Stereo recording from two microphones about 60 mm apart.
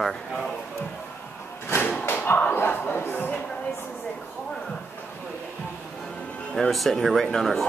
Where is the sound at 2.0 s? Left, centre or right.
Left.